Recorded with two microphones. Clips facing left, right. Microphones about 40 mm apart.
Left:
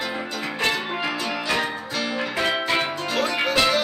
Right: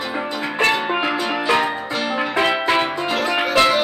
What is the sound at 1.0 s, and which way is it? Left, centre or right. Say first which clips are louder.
Music: right 6 dB; right.